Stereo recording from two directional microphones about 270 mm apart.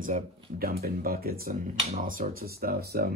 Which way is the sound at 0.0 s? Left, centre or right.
Right.